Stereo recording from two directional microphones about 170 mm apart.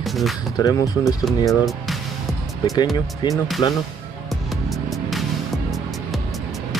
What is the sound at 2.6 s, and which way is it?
Speech, 20° left (ahead or behind).